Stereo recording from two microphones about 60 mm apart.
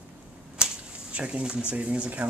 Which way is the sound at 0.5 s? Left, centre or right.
Centre.